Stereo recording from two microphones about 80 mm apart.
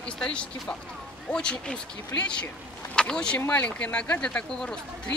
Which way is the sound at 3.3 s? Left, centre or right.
Left.